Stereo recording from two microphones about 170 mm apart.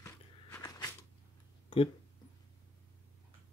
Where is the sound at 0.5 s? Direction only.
20° left (ahead or behind).